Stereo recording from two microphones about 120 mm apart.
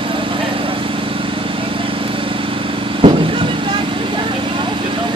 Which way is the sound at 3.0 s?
45° right (ahead or behind).